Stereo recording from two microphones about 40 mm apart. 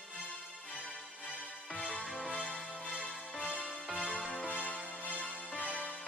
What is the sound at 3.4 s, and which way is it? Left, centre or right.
Music, left.